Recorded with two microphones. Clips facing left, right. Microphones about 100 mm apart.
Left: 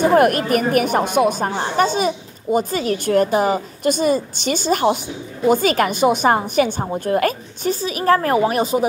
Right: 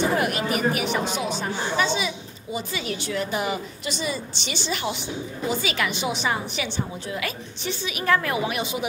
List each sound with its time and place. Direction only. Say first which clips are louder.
0.0 s speech: left 9 dB; 50° left (ahead or behind)